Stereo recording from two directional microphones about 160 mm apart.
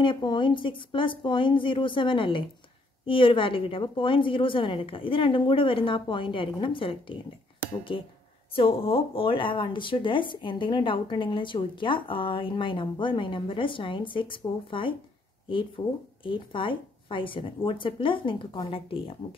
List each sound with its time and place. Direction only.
0.0 s speech: 30° left (ahead or behind)